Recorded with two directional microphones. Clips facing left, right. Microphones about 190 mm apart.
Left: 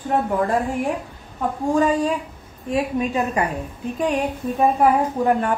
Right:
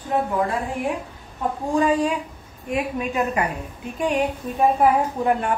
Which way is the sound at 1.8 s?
40° left (ahead or behind).